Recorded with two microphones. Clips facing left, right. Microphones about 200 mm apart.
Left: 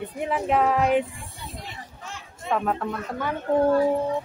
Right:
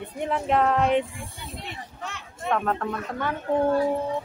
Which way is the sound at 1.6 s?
65° right (ahead or behind).